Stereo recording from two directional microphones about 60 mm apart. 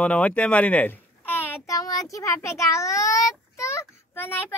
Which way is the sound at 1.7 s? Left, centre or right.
Left.